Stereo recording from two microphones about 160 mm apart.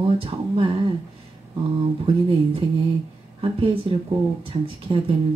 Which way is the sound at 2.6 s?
30° right (ahead or behind).